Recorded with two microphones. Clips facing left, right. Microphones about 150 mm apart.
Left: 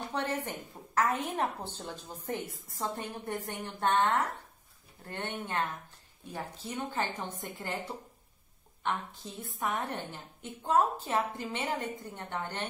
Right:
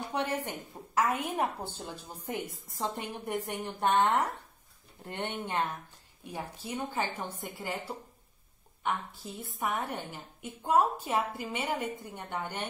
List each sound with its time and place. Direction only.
0.1 s a woman's voice: 10° right (ahead or behind)
8.8 s a woman's voice: 10° right (ahead or behind)